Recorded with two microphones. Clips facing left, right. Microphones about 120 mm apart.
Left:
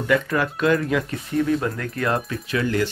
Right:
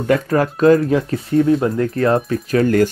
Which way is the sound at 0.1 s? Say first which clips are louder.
Right 5 dB; 40° right (ahead or behind).